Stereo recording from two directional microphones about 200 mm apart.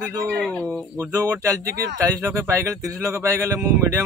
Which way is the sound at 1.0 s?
15° right (ahead or behind).